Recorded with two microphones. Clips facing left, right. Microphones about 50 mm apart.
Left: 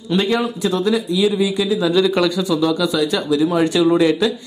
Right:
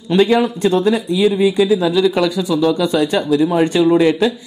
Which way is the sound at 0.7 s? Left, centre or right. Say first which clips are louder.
Right 1 dB; centre.